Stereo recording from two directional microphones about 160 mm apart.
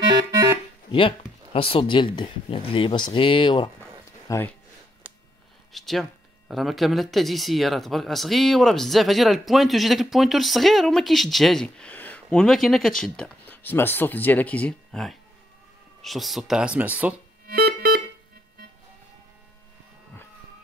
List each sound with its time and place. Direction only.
0.3 s music: 20° right (ahead or behind)
0.9 s speech: 35° left (ahead or behind)
4.3 s speech: 20° left (ahead or behind)
5.7 s speech: centre (ahead or behind)
17.5 s music: 70° right (ahead or behind)